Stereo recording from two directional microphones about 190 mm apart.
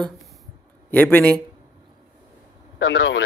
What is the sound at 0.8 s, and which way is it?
Speech, 10° left (ahead or behind).